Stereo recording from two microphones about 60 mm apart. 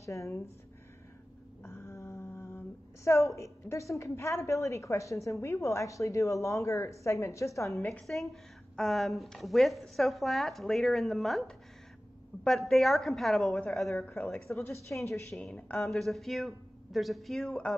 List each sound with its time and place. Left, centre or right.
0.0 s a woman's voice: left
1.6 s a sound: left
3.6 s a woman's voice: left
8.1 s a woman's voice: centre
12.4 s a woman's voice: centre
14.6 s a woman's voice: left
15.8 s a woman's voice: centre